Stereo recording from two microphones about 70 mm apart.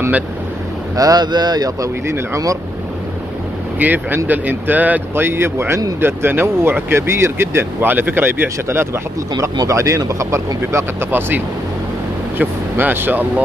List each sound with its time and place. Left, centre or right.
0.9 s a man's voice: right
2.0 s speech: right
3.8 s a man's voice: right
9.6 s speech: right
11.1 s speech: right